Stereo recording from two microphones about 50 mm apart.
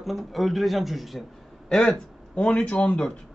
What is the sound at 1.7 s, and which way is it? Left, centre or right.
Speech, centre.